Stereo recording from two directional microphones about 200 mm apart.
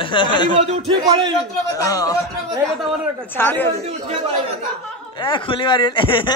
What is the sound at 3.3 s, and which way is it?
Speech, 10° left (ahead or behind).